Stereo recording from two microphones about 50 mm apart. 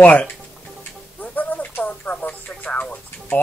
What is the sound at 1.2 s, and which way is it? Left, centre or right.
Radio, left.